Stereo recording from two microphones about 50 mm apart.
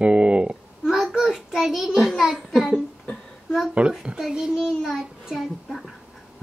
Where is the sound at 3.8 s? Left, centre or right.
Right.